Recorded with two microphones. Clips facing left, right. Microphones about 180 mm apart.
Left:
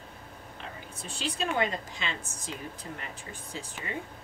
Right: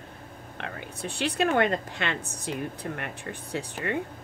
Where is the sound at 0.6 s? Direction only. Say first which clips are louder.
Right 8 dB; 65° right (ahead or behind).